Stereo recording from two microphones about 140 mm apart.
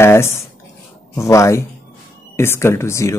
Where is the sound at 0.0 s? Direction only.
20° left (ahead or behind).